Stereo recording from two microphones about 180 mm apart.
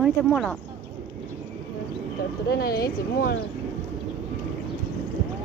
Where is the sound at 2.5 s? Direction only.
60° left (ahead or behind).